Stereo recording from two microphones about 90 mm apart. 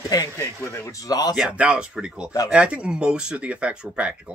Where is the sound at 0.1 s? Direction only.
45° left (ahead or behind).